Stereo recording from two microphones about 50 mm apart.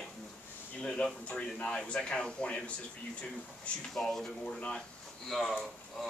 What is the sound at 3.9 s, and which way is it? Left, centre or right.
Speech, centre.